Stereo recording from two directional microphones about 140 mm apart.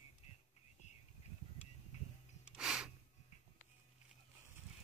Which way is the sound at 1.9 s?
55° left (ahead or behind).